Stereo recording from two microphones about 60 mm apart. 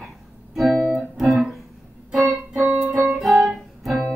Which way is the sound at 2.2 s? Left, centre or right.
Right.